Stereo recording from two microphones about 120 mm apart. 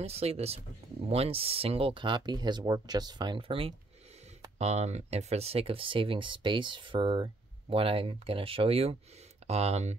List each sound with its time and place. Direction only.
0.0 s speech: 60° right (ahead or behind)
4.6 s speech: 65° right (ahead or behind)
9.5 s speech: 65° right (ahead or behind)